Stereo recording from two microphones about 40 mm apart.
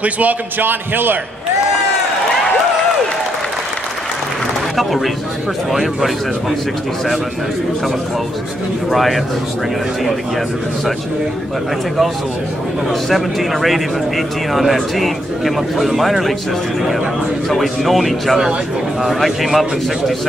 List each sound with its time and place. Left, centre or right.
0.0 s a man's voice: right
0.6 s a man's voice: right
4.7 s speech: centre
8.9 s speech: centre
13.1 s speech: centre
17.5 s speech: centre